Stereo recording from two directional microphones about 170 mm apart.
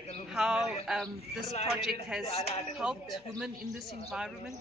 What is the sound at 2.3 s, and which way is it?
Speech, 35° left (ahead or behind).